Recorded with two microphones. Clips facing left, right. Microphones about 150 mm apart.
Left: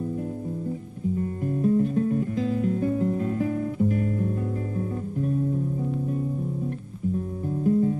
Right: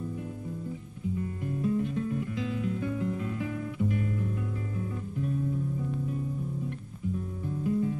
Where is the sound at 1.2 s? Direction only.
40° left (ahead or behind).